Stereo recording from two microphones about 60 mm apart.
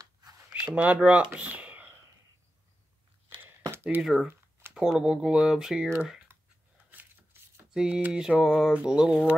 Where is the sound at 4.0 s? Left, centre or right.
Centre.